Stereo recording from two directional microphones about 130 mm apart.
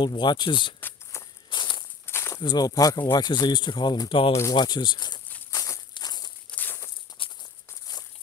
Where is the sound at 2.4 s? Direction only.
30° left (ahead or behind).